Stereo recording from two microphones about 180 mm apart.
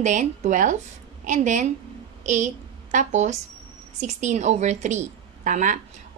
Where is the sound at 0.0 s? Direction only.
40° right (ahead or behind).